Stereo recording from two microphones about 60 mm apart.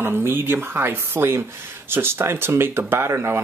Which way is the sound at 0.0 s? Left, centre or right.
Right.